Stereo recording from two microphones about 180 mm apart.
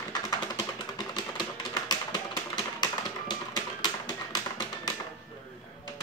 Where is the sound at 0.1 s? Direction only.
20° left (ahead or behind).